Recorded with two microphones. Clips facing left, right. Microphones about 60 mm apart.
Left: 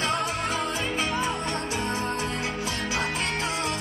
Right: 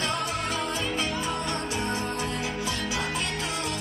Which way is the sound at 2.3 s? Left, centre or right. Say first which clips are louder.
Even; left.